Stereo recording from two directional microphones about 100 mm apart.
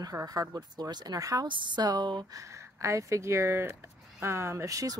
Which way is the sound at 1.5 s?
50° right (ahead or behind).